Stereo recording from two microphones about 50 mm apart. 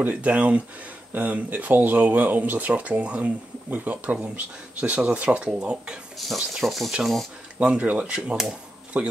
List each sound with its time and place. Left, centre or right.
0.0 s speech: right
6.1 s speech: centre
7.5 s speech: right